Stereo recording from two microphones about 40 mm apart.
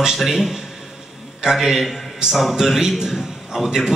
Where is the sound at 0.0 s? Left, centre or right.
Centre.